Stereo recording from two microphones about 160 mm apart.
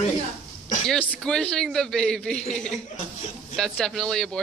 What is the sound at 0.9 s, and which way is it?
A man's voice, 5° left (ahead or behind).